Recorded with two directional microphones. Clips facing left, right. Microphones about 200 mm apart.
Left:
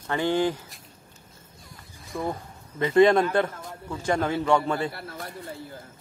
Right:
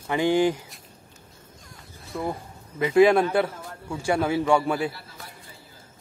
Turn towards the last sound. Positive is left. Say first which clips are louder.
# left 8 dB
turn(degrees=60)  # may be behind; listen again after turning